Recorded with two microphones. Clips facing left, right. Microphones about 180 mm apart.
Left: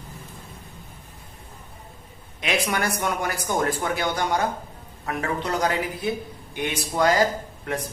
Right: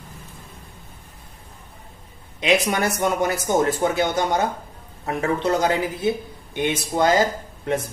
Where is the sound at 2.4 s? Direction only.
20° right (ahead or behind).